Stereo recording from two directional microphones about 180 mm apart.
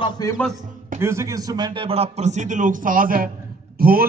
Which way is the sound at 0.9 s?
15° right (ahead or behind).